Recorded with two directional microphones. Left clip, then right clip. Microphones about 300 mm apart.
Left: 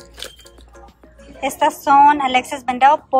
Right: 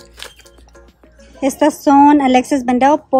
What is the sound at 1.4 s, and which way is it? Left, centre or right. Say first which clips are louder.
A woman's voice: right 3 dB; right.